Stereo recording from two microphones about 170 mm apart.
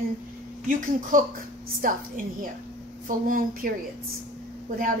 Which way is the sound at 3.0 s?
55° right (ahead or behind).